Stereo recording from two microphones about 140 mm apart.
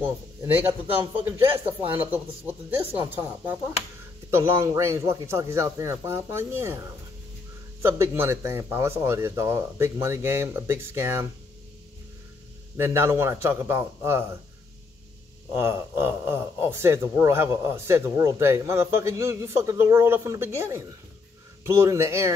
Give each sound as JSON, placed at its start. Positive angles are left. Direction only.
{"t": 1.1, "sound": "a man's voice", "side_deg": -15}
{"t": 7.8, "sound": "speech", "side_deg": -15}
{"t": 12.7, "sound": "speech", "side_deg": -15}
{"t": 15.5, "sound": "a man's voice", "side_deg": -15}